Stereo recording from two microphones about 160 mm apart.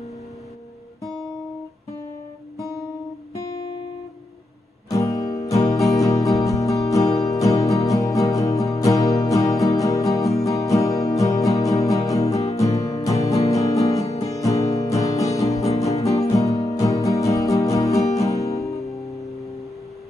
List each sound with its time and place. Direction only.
4.8 s music: 20° left (ahead or behind)
18.8 s music: centre (ahead or behind)